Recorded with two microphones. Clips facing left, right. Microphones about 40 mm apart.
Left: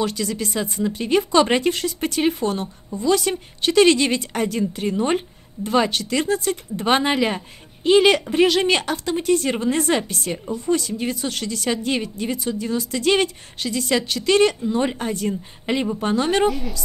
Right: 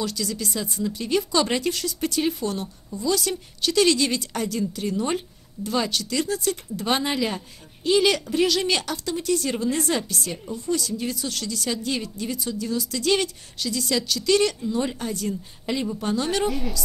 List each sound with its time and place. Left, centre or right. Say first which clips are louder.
0.0 s a woman's voice: left 4 dB; left
16.4 s a woman's voice: left 4 dB; centre